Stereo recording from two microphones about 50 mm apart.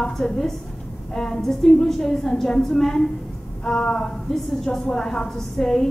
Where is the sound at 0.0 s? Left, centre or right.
Centre.